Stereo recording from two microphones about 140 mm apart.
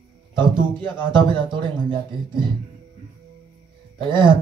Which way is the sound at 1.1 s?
35° right (ahead or behind).